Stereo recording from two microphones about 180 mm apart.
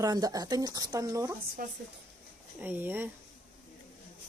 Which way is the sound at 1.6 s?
55° right (ahead or behind).